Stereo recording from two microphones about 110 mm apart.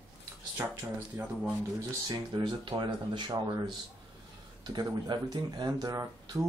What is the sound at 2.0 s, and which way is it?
Speech, 45° right (ahead or behind).